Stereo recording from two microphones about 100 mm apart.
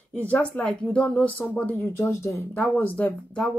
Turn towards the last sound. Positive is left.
turn(degrees=15)  # may be behind; listen again after turning